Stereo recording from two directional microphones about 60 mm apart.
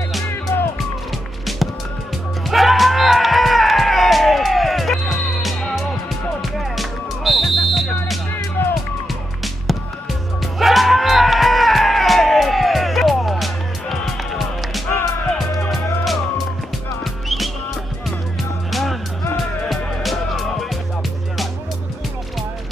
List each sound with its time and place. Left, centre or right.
0.5 s music: left
2.5 s music: centre
8.6 s music: left
10.4 s music: centre
18.7 s music: centre